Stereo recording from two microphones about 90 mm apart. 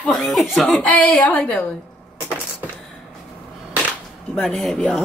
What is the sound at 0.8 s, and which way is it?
Speech, 15° left (ahead or behind).